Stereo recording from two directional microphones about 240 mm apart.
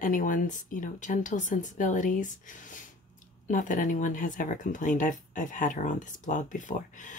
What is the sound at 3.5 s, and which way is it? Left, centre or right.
Speech, left.